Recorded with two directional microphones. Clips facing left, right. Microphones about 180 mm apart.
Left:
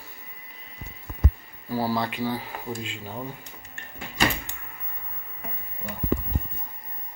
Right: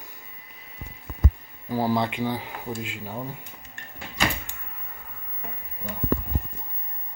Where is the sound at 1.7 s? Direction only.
20° right (ahead or behind).